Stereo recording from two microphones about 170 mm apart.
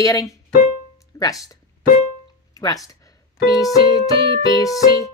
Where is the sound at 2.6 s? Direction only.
20° left (ahead or behind).